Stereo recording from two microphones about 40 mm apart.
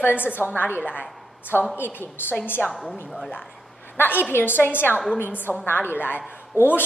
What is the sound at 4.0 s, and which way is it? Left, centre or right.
A woman's voice, left.